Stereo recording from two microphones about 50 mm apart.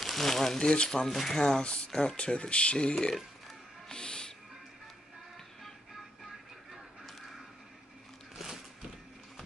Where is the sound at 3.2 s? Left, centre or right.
Centre.